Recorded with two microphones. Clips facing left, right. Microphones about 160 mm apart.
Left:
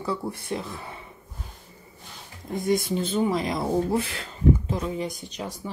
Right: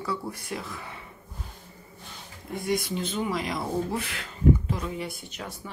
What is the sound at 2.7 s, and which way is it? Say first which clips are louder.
Speech: left 4 dB; 25° left (ahead or behind).